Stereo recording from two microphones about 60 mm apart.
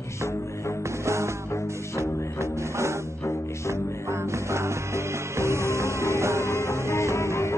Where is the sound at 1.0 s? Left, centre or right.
Right.